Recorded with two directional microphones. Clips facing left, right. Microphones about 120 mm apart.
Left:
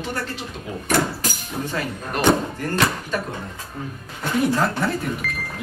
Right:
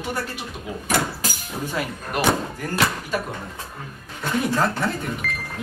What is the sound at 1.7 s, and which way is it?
Speech, 5° right (ahead or behind).